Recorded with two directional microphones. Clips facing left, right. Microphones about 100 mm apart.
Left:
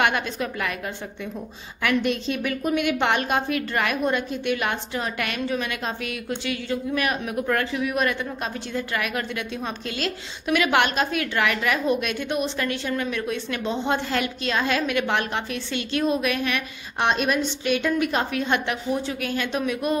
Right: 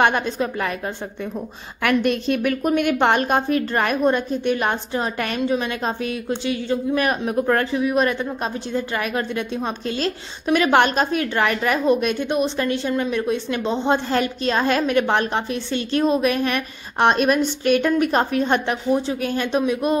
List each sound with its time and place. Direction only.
0.0 s a woman's voice: 30° right (ahead or behind)
1.8 s a woman's voice: 50° right (ahead or behind); by 20.0 s 25° right (ahead or behind)